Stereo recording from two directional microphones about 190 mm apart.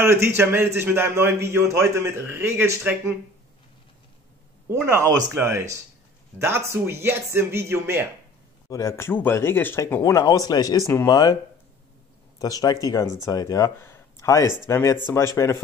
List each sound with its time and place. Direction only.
0.0 s speech: 15° right (ahead or behind)
4.6 s speech: 15° right (ahead or behind)
8.6 s speech: 15° left (ahead or behind)
12.4 s speech: 20° left (ahead or behind)